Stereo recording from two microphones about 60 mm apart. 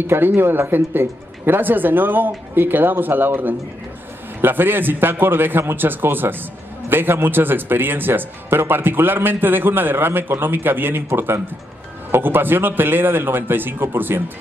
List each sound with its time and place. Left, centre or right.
0.0 s speech: right